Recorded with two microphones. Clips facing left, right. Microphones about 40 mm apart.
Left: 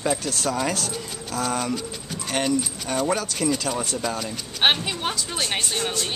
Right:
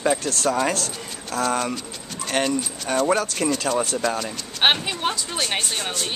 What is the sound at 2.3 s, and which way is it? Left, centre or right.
Speech, centre.